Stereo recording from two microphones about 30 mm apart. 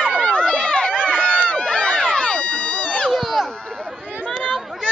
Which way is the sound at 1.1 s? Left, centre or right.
Left.